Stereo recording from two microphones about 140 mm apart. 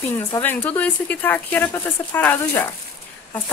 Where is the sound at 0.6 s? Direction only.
10° left (ahead or behind).